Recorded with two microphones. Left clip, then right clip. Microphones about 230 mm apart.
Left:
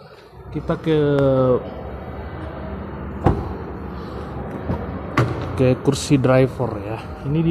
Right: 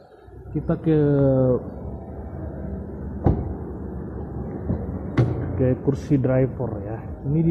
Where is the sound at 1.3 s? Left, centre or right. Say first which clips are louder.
Left 3 dB; left.